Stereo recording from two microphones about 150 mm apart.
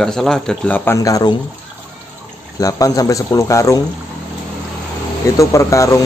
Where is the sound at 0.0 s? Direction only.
5° left (ahead or behind); by 1.3 s 20° left (ahead or behind).